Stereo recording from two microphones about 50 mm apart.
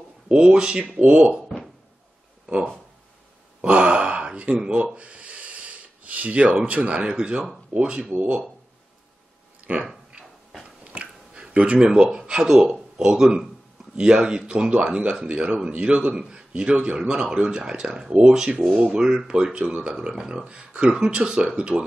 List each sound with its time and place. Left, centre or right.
0.3 s speech: right
2.4 s speech: centre
3.6 s a sound: centre
4.9 s snort: right
6.6 s speech: right
8.1 s speech: right
9.6 s a sound: right
12.9 s a man's voice: centre